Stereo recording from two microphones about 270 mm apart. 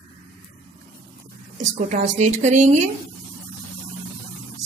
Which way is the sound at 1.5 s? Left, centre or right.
Right.